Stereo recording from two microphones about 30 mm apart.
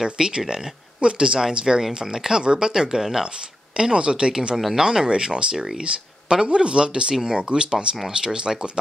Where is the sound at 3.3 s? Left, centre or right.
Right.